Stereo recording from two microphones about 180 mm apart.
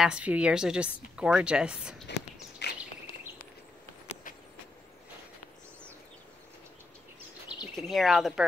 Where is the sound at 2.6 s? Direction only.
70° left (ahead or behind).